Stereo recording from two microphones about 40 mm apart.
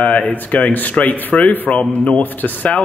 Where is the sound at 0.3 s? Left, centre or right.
Left.